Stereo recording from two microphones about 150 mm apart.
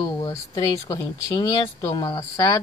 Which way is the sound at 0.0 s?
25° left (ahead or behind).